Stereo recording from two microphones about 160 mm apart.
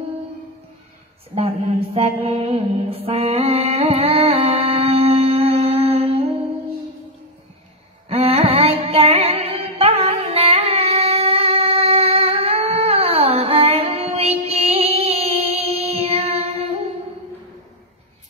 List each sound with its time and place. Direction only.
1.3 s mantra: 40° right (ahead or behind)
8.1 s music: 35° right (ahead or behind)